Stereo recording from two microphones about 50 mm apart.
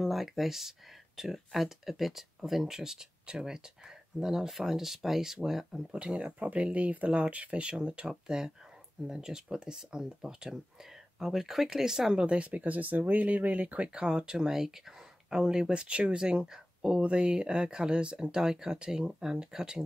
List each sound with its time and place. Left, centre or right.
0.0 s speech: centre
5.9 s speech: centre
15.7 s speech: right